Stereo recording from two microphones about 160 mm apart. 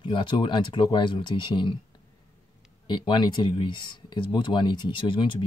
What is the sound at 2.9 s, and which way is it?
Speech, 25° left (ahead or behind).